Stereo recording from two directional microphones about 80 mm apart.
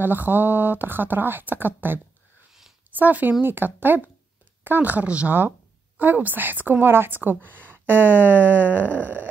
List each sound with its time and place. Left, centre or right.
0.0 s speech: right
3.0 s speech: right